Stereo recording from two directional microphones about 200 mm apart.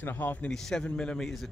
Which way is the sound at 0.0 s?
10° left (ahead or behind).